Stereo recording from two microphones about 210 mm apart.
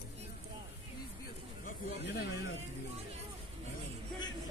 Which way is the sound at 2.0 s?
55° left (ahead or behind).